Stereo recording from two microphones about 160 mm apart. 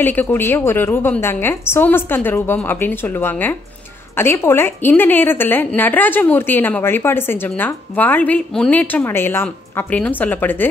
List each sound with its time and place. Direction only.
0.0 s a woman's voice: 10° left (ahead or behind)